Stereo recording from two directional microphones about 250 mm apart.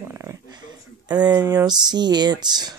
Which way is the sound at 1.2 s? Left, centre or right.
Centre.